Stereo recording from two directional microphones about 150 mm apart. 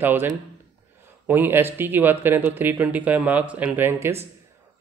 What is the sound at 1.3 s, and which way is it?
A man's voice, 15° right (ahead or behind).